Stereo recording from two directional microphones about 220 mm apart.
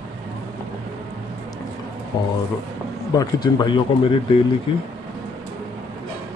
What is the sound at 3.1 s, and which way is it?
Speech, 20° left (ahead or behind).